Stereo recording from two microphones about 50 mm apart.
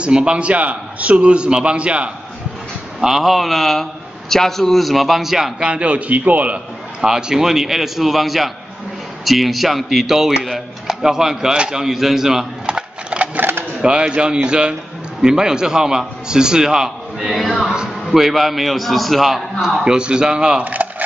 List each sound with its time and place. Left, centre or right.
0.0 s a man's voice: centre
3.0 s a man's voice: centre
5.6 s a man's voice: right
7.0 s a man's voice: centre
11.8 s a sound: centre; by 13.4 s right
13.4 s a sound: right
13.7 s a man's voice: centre
20.6 s speech: right